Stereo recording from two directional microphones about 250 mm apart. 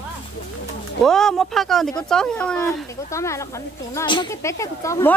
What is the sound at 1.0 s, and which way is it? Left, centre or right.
Speech, centre.